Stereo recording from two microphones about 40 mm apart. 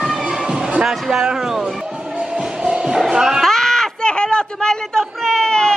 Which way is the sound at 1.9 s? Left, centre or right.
Right.